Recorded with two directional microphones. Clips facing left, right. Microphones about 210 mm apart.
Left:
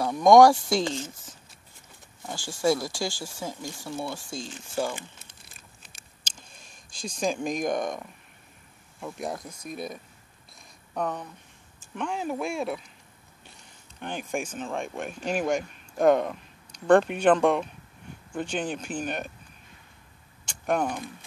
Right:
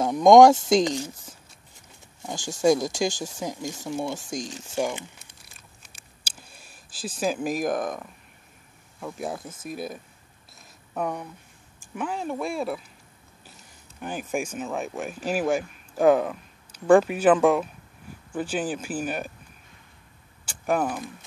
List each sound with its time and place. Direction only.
0.0 s speech: 20° right (ahead or behind)
6.2 s speech: 10° right (ahead or behind)
11.0 s speech: 10° right (ahead or behind)
13.9 s speech: 5° right (ahead or behind)
20.4 s speech: 5° right (ahead or behind)